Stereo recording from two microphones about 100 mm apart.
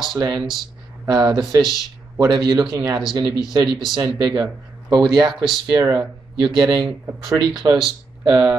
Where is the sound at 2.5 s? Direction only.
50° right (ahead or behind).